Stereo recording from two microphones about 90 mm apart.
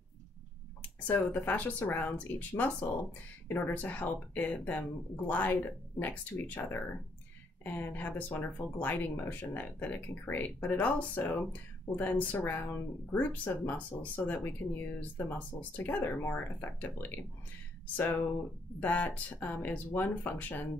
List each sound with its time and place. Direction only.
1.0 s speech: 25° left (ahead or behind)